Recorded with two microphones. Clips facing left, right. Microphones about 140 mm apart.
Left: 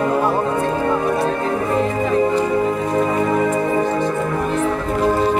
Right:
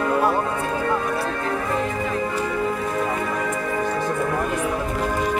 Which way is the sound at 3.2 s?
30° left (ahead or behind).